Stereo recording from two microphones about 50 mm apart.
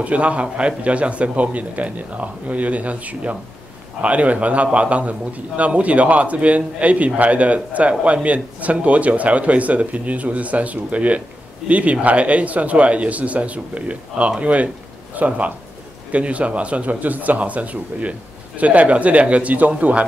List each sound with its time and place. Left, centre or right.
0.0 s speech: right